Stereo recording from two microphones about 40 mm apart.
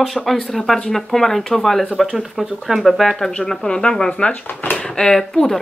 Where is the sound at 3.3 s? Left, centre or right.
Centre.